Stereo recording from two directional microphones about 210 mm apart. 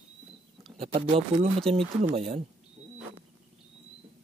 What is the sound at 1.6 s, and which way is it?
Speech, 30° right (ahead or behind).